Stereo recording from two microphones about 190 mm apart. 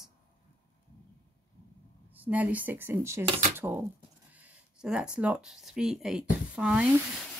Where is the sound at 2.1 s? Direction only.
10° right (ahead or behind).